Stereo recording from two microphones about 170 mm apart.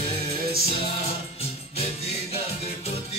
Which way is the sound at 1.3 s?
35° left (ahead or behind).